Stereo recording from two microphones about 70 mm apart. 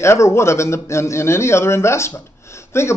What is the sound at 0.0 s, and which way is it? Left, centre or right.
Speech, left.